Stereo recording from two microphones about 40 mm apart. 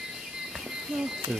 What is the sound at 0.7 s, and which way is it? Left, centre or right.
Music, centre.